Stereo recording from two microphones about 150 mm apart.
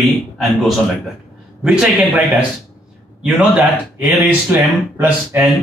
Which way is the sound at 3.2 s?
5° right (ahead or behind).